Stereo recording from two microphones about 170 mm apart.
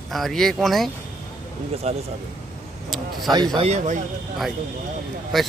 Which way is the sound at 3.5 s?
40° right (ahead or behind).